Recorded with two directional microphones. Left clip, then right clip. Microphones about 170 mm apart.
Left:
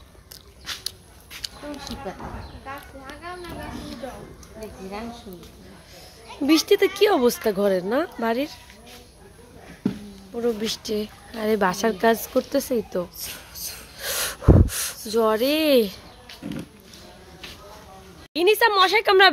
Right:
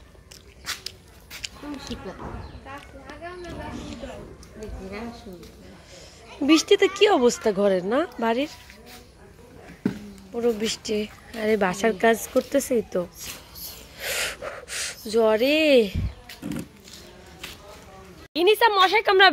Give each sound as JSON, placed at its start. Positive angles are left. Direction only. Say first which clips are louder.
{"t": 0.7, "sound": "dog", "louder": "right 1 dB", "side_deg": -70}
{"t": 1.4, "sound": "a sound", "louder": "left 2 dB", "side_deg": 10}
{"t": 3.7, "sound": "a woman's voice", "louder": "left 2 dB", "side_deg": 10}
{"t": 6.2, "sound": "speech", "louder": "even", "side_deg": 0}
{"t": 10.3, "sound": "speech", "louder": "right 1 dB", "side_deg": 0}
{"t": 13.6, "sound": "gasp", "louder": "left 2 dB", "side_deg": 5}
{"t": 16.3, "sound": "wild animals", "louder": "even", "side_deg": -65}
{"t": 18.3, "sound": "a woman's voice", "louder": "even", "side_deg": 5}
{"t": 18.7, "sound": "a woman's voice", "louder": "left 1 dB", "side_deg": 15}